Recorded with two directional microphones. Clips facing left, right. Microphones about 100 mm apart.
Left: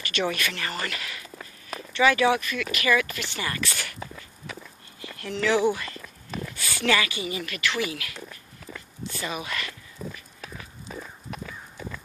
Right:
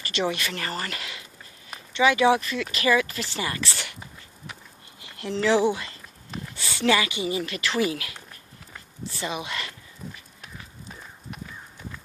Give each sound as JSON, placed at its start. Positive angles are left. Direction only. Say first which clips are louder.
{"t": 0.0, "sound": "speech", "louder": "even", "side_deg": -25}
{"t": 5.0, "sound": "speech", "louder": "right 2 dB", "side_deg": -25}
{"t": 9.2, "sound": "a sound", "louder": "right 1 dB", "side_deg": -25}